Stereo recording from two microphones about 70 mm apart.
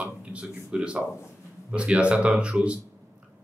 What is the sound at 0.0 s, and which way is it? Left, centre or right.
A man's voice, centre.